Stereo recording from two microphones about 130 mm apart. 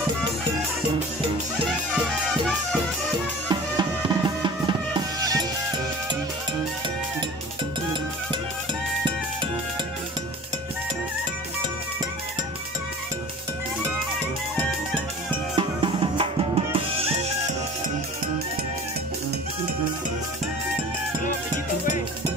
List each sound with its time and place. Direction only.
3.4 s music: 35° right (ahead or behind)
15.5 s drum: 40° right (ahead or behind)